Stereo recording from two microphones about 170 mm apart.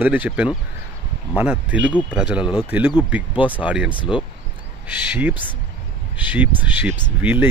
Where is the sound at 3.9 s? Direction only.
30° left (ahead or behind).